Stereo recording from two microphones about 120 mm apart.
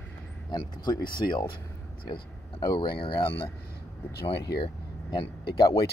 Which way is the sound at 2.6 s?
40° left (ahead or behind).